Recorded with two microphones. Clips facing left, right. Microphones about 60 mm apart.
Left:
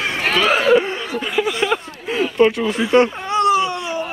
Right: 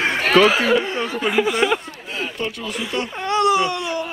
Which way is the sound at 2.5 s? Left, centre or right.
Left.